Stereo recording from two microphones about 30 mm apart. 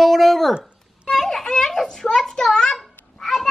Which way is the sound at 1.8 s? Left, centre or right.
Left.